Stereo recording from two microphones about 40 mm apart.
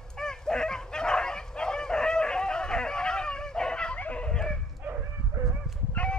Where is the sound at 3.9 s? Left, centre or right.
Left.